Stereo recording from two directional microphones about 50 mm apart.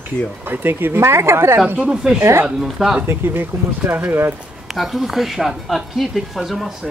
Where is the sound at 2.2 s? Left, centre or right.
Right.